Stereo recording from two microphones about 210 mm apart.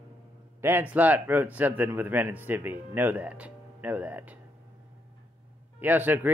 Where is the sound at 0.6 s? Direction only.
10° right (ahead or behind).